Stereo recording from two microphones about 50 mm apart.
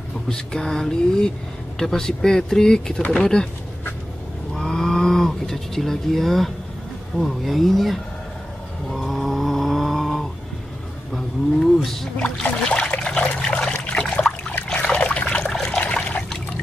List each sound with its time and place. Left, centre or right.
0.3 s speech: centre
4.6 s a sound: centre
7.2 s speech: centre
8.8 s snoring: centre
11.1 s speech: centre
12.2 s trickle: left
15.5 s water: centre